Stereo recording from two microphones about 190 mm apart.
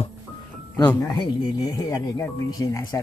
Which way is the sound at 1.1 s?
20° left (ahead or behind).